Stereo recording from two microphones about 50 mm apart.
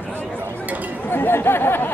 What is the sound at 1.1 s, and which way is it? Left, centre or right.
Speech, left.